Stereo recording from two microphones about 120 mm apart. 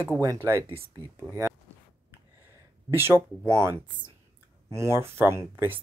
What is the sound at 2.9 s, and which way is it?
Speech, 20° right (ahead or behind).